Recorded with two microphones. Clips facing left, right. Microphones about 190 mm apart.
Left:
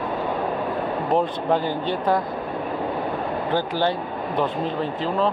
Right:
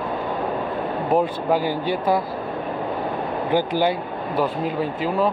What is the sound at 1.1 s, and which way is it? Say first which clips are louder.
Speech: right 2 dB; 10° right (ahead or behind).